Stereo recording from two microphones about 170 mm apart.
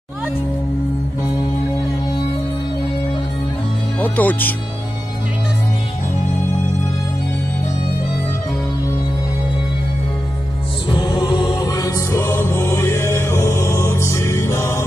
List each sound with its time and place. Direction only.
4.0 s speech: 10° left (ahead or behind)
10.9 s mantra: 25° left (ahead or behind)